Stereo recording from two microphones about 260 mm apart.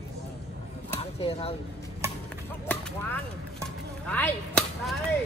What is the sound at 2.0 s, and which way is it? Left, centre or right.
Chop, centre.